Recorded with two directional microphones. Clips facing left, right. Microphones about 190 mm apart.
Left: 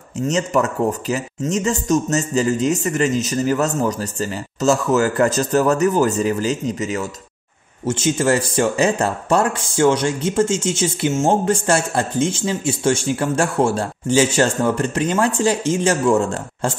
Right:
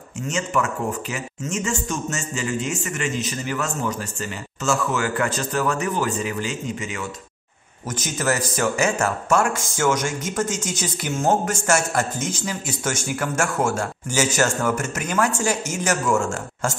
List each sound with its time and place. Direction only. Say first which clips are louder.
0.3 s speech: left 5 dB; 35° left (ahead or behind)
7.8 s speech: left 7 dB; 25° left (ahead or behind)